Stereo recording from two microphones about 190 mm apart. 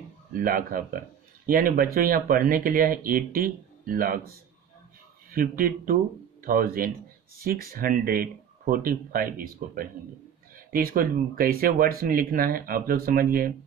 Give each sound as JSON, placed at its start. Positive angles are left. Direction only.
{"t": 0.3, "sound": "speech", "side_deg": -45}
{"t": 5.3, "sound": "speech", "side_deg": -50}